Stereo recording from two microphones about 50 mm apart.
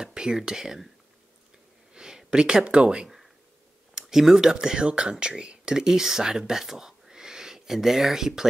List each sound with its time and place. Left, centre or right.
0.0 s speech: centre
2.0 s speech: centre
4.0 s speech: centre